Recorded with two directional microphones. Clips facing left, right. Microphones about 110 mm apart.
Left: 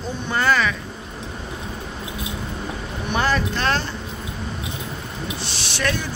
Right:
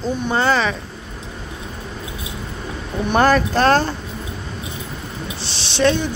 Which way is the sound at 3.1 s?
45° right (ahead or behind).